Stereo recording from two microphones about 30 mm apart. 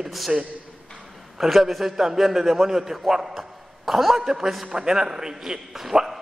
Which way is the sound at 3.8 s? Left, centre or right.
Centre.